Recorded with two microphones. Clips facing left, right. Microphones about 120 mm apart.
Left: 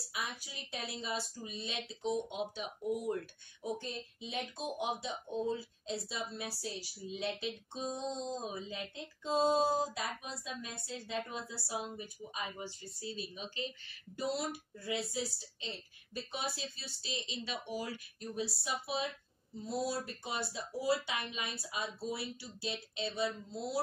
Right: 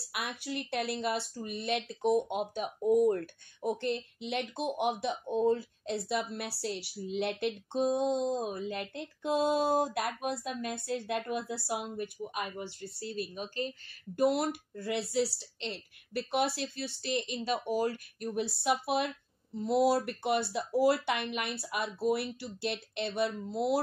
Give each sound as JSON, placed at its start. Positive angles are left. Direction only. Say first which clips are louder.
{"t": 0.1, "sound": "speech", "louder": "right 6 dB", "side_deg": -65}